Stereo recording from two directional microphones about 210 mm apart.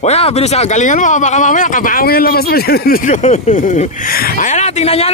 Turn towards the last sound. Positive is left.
turn(degrees=30)  # may be behind; listen again after turning